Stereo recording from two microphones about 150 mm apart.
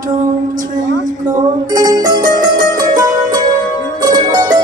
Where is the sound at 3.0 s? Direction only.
25° right (ahead or behind).